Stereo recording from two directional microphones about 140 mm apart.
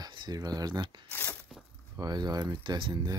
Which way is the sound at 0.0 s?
30° right (ahead or behind).